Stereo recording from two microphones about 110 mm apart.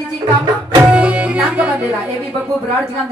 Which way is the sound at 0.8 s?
10° right (ahead or behind).